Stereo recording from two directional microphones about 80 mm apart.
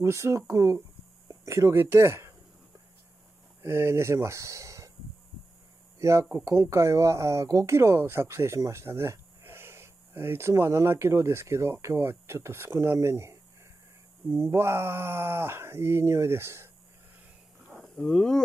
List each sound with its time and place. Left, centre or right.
0.0 s speech: right
3.6 s speech: right
5.9 s speech: right
17.9 s speech: centre